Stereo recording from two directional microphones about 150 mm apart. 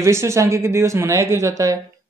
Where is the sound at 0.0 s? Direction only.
20° right (ahead or behind).